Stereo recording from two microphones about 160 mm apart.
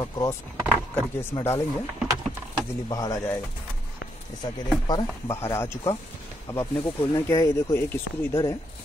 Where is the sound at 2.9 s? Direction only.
20° left (ahead or behind).